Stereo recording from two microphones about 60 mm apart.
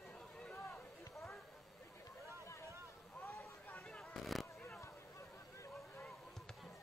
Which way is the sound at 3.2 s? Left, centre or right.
Left.